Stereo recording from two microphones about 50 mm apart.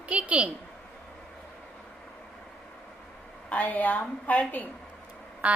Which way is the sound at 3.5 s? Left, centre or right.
Left.